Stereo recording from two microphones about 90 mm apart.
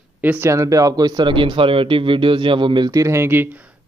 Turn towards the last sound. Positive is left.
turn(degrees=-25)  # may be behind; listen again after turning